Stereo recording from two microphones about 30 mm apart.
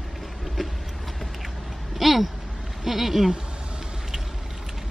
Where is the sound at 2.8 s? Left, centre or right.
Centre.